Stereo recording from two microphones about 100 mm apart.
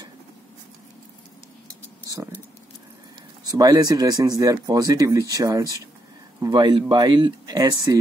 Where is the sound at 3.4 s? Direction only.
40° right (ahead or behind).